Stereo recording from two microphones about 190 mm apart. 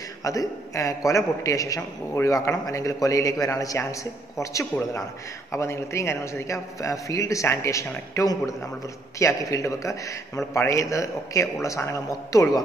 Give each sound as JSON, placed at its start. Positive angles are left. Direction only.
{"t": 0.2, "sound": "a man's voice", "side_deg": 15}